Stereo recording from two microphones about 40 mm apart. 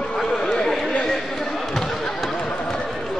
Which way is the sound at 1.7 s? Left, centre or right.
Centre.